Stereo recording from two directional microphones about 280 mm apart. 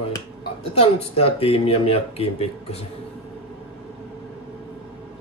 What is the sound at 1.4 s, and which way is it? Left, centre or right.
Speech, centre.